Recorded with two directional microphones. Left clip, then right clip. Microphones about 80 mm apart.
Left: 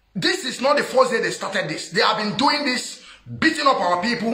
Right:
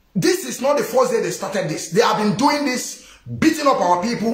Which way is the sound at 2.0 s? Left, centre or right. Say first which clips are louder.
Right 3 dB; right.